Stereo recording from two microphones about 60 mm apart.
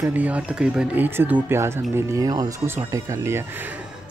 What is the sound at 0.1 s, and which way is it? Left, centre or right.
Speech, right.